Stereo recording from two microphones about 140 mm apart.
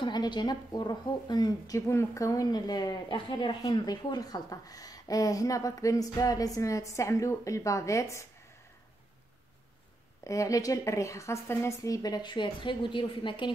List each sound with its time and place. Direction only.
0.0 s a woman's voice: 30° left (ahead or behind)
10.2 s a woman's voice: 20° left (ahead or behind)